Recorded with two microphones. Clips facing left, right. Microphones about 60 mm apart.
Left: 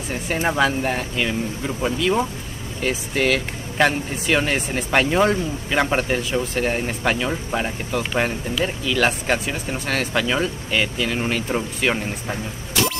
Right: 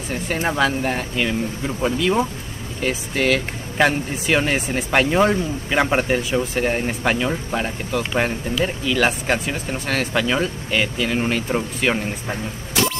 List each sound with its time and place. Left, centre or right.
0.5 s speech: centre